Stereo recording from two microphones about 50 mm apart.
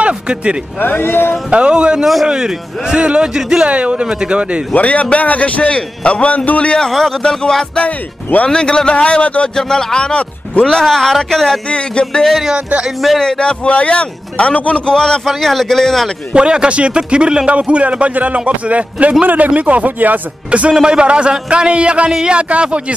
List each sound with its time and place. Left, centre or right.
0.0 s speech: right
0.7 s speech: left
1.5 s speech: right
3.6 s speech: right
4.7 s a man's voice: left
6.9 s a man's voice: centre; by 9.5 s left
9.6 s a man's voice: centre
15.2 s a man's voice: centre
16.3 s speech: centre
20.7 s speech: centre